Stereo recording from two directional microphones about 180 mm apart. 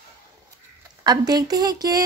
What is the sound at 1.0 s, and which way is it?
Speech, 20° right (ahead or behind).